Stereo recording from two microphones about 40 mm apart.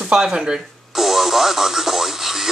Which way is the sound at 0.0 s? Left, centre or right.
Centre.